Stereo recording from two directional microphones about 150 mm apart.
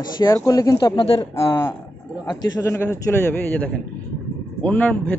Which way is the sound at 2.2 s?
20° left (ahead or behind).